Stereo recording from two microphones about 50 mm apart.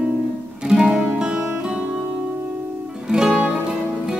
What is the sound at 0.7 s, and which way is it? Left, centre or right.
Music, centre.